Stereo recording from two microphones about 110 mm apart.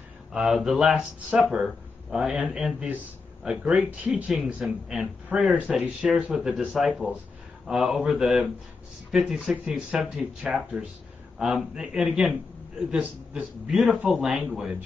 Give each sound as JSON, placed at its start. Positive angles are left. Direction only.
{"t": 0.3, "sound": "speech", "side_deg": -5}